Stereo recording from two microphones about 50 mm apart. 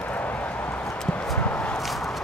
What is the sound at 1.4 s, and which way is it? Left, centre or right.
Walk, left.